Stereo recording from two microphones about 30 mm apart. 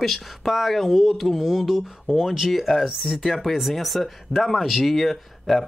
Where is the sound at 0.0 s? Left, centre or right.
Centre.